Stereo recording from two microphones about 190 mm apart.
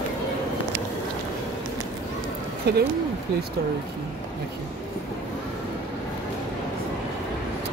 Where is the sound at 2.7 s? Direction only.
55° right (ahead or behind).